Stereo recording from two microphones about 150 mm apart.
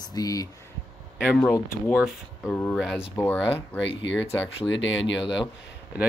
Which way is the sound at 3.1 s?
15° left (ahead or behind).